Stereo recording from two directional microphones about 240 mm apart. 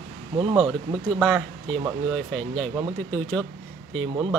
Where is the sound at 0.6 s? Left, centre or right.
Centre.